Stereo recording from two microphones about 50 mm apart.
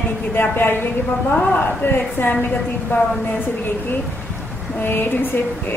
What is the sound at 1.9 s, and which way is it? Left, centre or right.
A woman's voice, left.